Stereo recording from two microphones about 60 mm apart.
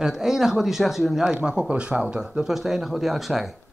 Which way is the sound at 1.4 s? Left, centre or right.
Centre.